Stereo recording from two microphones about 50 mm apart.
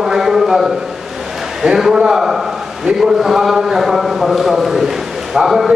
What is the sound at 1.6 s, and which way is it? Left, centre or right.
A man's voice, centre.